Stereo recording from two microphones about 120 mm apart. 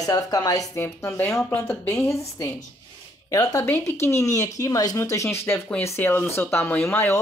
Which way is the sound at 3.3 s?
20° left (ahead or behind).